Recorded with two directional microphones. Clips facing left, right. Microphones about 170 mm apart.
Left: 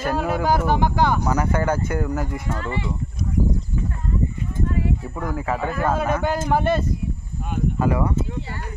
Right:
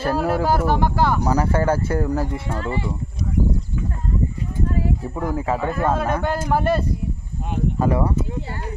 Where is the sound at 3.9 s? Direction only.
35° right (ahead or behind).